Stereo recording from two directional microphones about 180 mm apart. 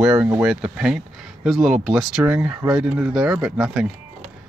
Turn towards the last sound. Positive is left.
turn(degrees=-5)  # may be behind; listen again after turning